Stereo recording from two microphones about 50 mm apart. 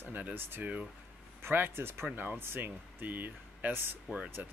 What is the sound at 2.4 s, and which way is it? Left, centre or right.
Speech, right.